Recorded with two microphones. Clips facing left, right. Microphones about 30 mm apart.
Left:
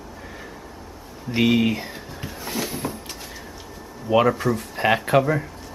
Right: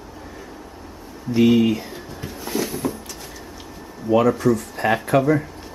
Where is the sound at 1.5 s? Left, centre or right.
Left.